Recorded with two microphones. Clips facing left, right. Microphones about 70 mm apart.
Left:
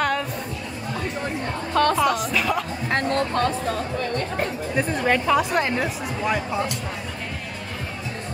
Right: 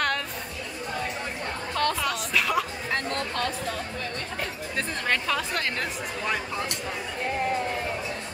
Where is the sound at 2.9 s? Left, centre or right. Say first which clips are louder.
Left 6 dB; left.